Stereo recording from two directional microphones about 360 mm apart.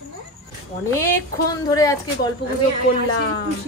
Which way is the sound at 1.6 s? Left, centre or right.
Centre.